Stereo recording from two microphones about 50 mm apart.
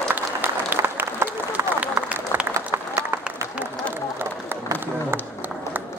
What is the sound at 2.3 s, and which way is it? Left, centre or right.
Applause, right.